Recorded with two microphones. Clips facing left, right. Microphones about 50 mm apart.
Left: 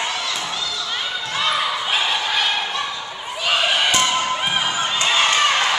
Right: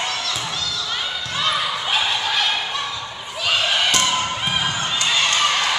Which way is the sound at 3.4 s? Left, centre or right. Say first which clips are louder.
Left 1 dB; centre.